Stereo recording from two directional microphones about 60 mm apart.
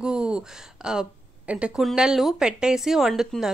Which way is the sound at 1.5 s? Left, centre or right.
Right.